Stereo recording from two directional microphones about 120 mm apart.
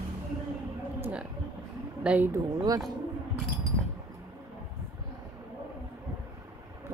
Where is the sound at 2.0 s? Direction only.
15° right (ahead or behind).